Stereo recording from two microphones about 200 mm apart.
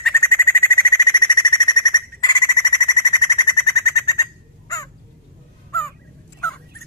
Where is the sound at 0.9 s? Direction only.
20° left (ahead or behind).